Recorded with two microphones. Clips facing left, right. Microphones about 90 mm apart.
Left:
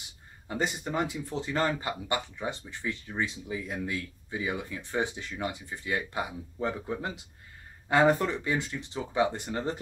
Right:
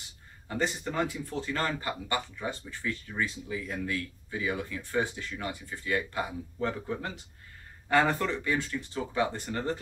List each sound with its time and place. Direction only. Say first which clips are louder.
0.5 s speech: even; 20° left (ahead or behind)